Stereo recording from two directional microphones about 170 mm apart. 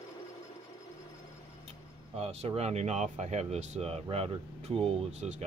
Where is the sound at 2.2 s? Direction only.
35° right (ahead or behind).